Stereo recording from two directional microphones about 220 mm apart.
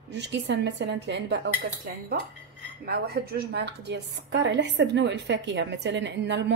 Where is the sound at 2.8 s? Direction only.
45° right (ahead or behind).